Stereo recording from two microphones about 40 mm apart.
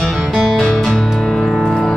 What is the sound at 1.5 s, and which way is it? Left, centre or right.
Music, centre.